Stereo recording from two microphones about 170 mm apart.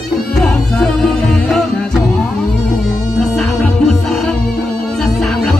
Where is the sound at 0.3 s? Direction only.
5° left (ahead or behind).